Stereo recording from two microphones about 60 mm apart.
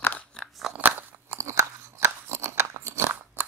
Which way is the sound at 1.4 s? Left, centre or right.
Right.